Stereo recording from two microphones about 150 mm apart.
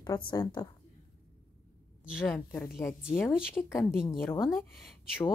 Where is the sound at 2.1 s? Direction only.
15° left (ahead or behind).